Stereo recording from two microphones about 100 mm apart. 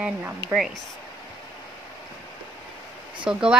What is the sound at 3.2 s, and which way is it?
Speech, 10° right (ahead or behind).